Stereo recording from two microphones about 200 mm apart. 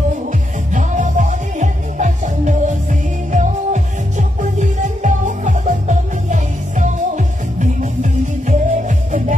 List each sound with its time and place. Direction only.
0.7 s music: 40° right (ahead or behind)